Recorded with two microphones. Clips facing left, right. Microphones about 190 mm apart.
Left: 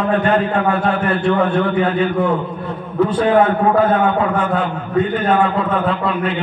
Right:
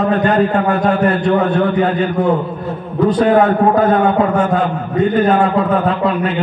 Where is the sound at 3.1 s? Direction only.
40° right (ahead or behind).